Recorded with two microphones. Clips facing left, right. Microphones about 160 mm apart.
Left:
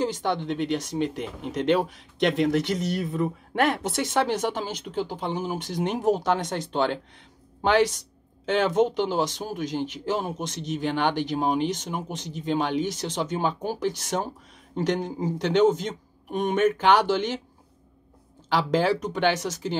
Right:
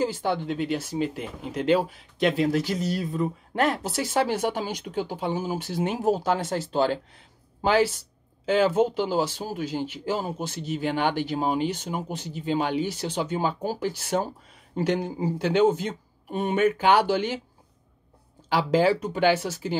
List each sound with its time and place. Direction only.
0.0 s speech: 10° right (ahead or behind)
8.5 s speech: 5° right (ahead or behind)
18.7 s speech: 10° right (ahead or behind)